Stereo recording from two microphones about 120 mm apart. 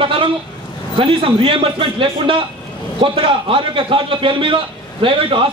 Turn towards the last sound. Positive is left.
turn(degrees=-45)  # may be behind; listen again after turning